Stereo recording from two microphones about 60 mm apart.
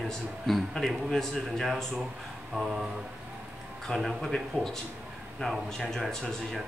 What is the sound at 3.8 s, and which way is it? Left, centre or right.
Speech, centre.